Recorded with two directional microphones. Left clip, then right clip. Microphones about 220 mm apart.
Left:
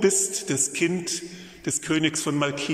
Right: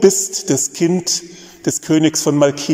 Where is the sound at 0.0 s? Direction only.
25° right (ahead or behind).